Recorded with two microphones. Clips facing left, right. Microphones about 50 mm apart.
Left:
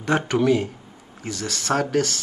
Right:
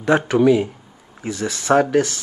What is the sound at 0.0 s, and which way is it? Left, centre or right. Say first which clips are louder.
Speech: right 5 dB; centre.